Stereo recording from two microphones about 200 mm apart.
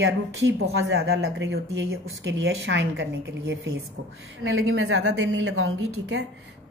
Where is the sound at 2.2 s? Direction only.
70° right (ahead or behind).